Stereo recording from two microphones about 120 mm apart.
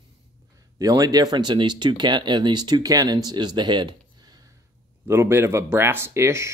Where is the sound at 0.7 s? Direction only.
30° right (ahead or behind).